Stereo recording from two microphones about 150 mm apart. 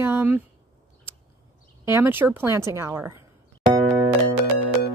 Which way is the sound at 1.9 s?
15° right (ahead or behind).